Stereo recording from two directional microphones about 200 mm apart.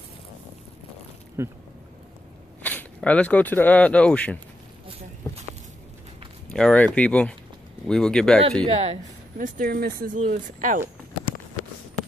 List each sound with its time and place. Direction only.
1.4 s speech: 15° right (ahead or behind)
2.6 s speech: 10° left (ahead or behind)
6.5 s speech: 5° left (ahead or behind)
8.6 s a woman's voice: 30° right (ahead or behind)
9.4 s speech: 45° right (ahead or behind)